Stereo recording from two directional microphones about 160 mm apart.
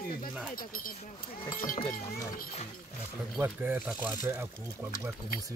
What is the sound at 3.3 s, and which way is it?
Speech, 10° right (ahead or behind).